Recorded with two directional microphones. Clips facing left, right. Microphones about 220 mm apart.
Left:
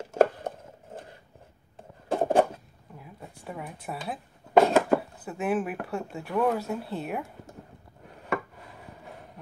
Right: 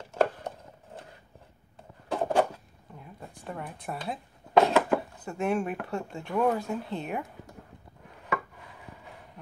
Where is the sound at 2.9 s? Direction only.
5° left (ahead or behind).